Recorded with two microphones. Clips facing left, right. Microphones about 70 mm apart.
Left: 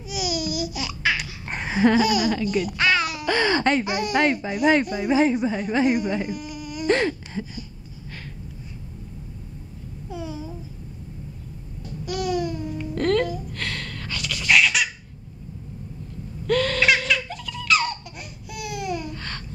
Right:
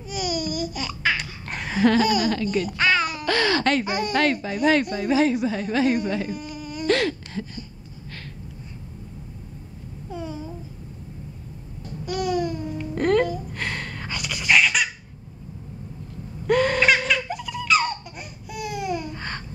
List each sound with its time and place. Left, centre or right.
0.0 s babbling: centre
1.7 s speech: centre
3.3 s speech: left
3.8 s speech: centre
5.1 s speech: left; by 6.9 s centre
6.9 s gasp: left
10.1 s babbling: centre
12.0 s babbling: centre
13.5 s a sound: centre
16.4 s owl: centre
17.2 s laughter: centre